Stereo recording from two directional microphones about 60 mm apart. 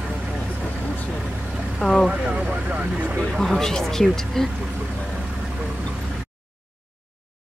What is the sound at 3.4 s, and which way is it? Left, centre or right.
Speech, centre.